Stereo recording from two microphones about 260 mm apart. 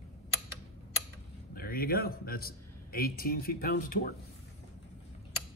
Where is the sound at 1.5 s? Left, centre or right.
Left.